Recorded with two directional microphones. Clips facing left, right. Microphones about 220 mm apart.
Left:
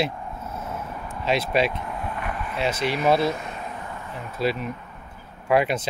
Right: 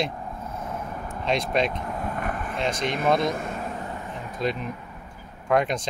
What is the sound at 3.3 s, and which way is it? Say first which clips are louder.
Vehicle: right 3 dB; 45° right (ahead or behind).